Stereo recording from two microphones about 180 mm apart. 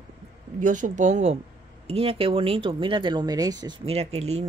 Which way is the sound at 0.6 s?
45° right (ahead or behind).